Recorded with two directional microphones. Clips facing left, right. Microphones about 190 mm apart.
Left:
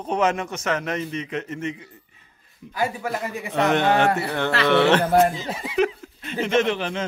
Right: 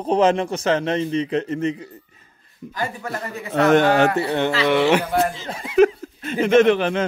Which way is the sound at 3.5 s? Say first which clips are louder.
Right 4 dB; 45° right (ahead or behind).